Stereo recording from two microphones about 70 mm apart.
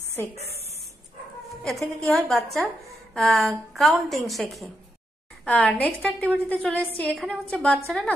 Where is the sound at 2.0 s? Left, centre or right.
Centre.